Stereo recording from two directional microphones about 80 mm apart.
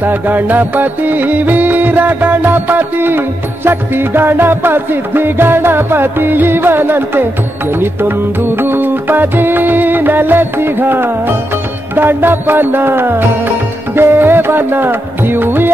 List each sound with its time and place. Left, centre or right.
0.0 s music: right
8.5 s music: right